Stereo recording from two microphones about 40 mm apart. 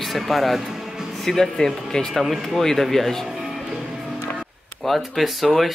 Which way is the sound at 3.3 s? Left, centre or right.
Centre.